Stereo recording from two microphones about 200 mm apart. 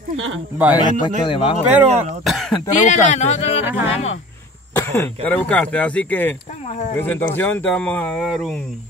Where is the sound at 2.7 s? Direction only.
35° left (ahead or behind).